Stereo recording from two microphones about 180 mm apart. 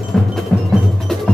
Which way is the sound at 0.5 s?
5° left (ahead or behind).